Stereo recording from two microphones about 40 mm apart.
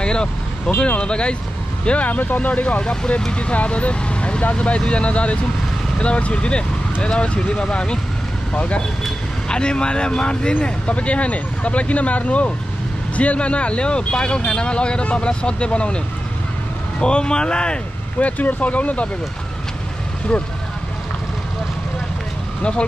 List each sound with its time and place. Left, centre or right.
0.0 s vehicle: left
0.7 s speech: left
2.0 s speech: left
2.8 s speech: centre
3.3 s speech: left
17.0 s speech: left
18.2 s speech: left
22.6 s speech: left